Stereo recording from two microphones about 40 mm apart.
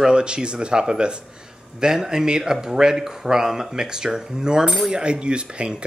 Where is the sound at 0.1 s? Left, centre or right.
Right.